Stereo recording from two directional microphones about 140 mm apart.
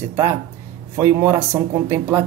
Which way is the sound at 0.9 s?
20° right (ahead or behind).